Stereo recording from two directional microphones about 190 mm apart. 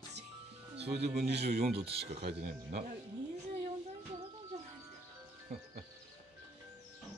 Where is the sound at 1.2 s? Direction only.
60° right (ahead or behind).